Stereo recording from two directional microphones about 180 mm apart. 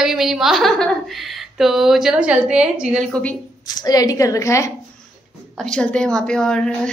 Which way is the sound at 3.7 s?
20° left (ahead or behind).